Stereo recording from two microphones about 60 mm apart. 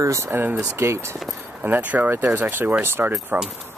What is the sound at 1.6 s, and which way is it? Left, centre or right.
Speech, right.